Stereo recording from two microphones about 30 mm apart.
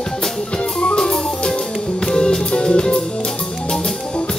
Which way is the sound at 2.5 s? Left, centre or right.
Left.